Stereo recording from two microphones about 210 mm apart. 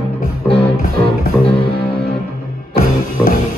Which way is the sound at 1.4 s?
25° left (ahead or behind).